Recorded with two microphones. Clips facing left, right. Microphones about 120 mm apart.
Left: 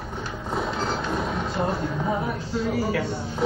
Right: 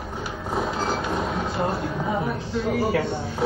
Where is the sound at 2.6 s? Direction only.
45° right (ahead or behind).